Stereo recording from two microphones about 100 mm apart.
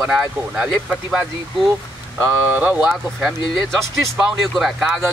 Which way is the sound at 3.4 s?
55° left (ahead or behind).